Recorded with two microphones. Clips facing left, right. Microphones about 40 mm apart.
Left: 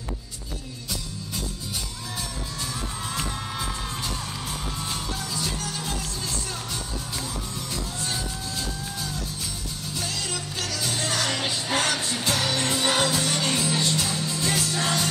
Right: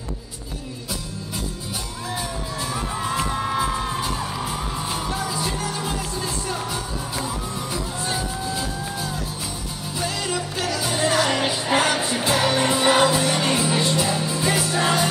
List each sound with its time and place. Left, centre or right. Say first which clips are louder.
2.7 s music: right 8 dB; centre